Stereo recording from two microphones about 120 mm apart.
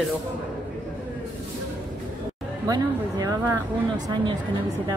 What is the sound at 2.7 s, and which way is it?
Speech, 30° right (ahead or behind).